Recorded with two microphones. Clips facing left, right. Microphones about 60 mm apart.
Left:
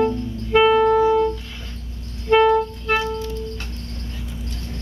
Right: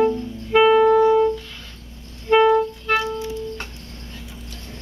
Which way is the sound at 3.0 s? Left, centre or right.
Centre.